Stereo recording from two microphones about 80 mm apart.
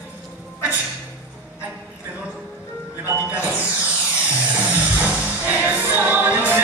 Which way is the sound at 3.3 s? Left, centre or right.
Centre.